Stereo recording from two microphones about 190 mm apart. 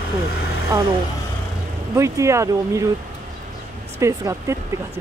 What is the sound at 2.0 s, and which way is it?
Speech, 15° right (ahead or behind).